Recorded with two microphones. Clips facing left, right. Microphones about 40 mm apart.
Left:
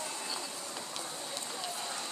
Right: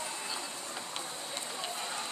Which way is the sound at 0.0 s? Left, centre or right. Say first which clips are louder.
Right 1 dB; centre.